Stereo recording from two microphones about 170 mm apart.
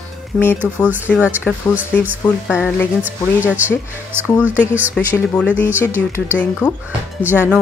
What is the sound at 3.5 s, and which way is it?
Speech, 10° right (ahead or behind).